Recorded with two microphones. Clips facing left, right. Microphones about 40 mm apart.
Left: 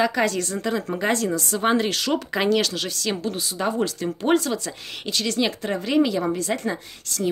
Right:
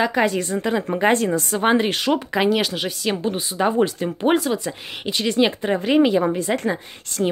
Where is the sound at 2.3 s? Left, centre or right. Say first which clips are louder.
Right 2 dB; centre.